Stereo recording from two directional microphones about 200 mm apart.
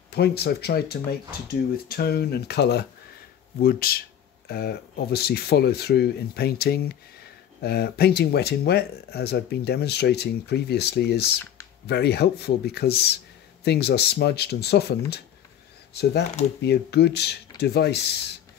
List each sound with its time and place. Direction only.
0.1 s speech: 55° left (ahead or behind)